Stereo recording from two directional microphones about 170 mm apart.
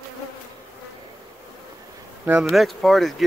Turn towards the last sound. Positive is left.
turn(degrees=0)  # may be behind; listen again after turning